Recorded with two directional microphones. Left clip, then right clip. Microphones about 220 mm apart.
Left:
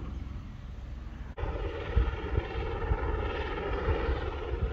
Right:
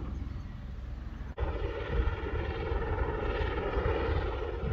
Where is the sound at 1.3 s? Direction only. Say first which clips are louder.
Even; 40° left (ahead or behind).